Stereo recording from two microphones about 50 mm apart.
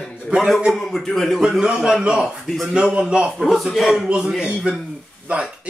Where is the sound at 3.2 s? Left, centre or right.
Centre.